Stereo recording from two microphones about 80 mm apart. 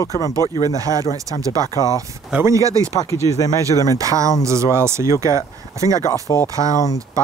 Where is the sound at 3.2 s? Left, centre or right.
Left.